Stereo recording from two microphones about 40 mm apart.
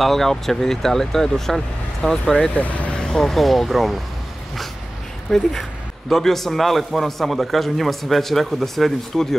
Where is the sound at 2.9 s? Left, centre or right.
Centre.